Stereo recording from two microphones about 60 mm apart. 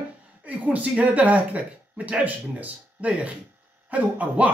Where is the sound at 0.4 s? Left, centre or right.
Right.